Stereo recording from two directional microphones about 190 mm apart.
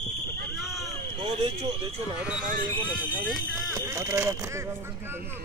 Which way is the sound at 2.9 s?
10° right (ahead or behind).